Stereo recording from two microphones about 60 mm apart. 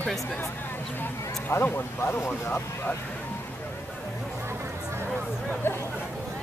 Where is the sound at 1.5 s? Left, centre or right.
Left.